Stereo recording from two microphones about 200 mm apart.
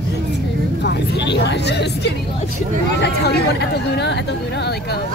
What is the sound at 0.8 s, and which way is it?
Vehicle, 60° left (ahead or behind).